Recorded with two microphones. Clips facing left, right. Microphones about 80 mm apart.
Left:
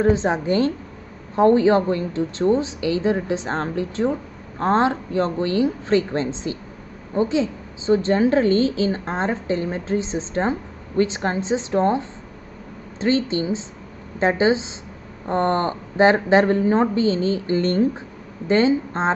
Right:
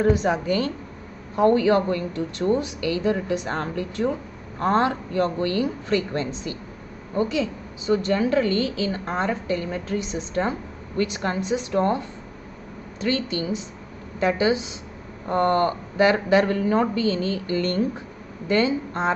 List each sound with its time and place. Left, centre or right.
0.0 s a woman's voice: left